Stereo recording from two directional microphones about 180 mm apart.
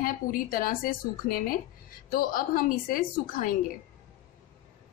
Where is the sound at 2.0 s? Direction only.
50° left (ahead or behind).